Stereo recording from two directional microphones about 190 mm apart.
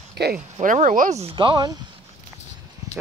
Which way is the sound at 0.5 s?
40° right (ahead or behind).